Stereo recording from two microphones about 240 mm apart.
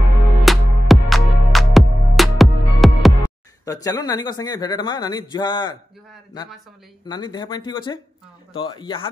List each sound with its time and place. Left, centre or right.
0.5 s music: centre
3.6 s a man's voice: centre
7.1 s a man's voice: centre